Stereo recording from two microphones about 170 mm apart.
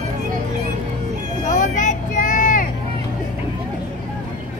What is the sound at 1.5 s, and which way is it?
Vehicle, 50° left (ahead or behind).